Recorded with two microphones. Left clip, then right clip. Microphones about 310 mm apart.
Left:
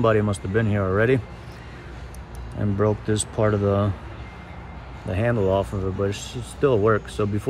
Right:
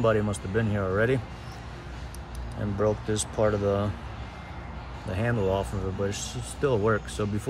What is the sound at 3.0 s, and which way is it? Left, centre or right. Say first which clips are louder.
Speech: left 3 dB; left.